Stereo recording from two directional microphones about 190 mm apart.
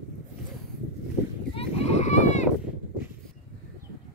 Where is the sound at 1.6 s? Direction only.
35° left (ahead or behind).